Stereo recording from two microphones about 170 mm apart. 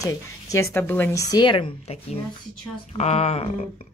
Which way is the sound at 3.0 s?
40° left (ahead or behind).